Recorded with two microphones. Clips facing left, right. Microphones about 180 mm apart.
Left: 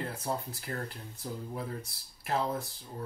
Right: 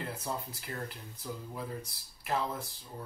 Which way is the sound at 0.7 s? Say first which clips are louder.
Left 3 dB; 50° left (ahead or behind).